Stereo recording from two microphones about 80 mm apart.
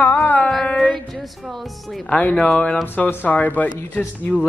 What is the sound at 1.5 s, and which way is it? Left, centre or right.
Speech, centre.